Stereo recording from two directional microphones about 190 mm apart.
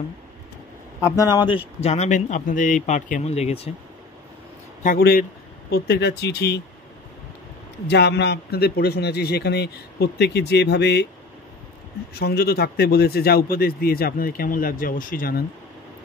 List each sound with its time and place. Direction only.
1.0 s a man's voice: 20° left (ahead or behind)
4.8 s a man's voice: 50° left (ahead or behind)
7.9 s a man's voice: 60° left (ahead or behind)
12.1 s a man's voice: 60° left (ahead or behind)